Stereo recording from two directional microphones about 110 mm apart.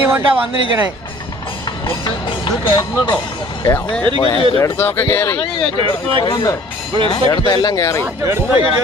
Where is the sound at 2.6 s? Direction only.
45° left (ahead or behind).